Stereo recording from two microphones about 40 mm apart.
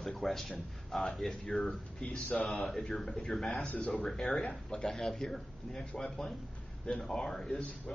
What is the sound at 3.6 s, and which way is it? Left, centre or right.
Speech, left.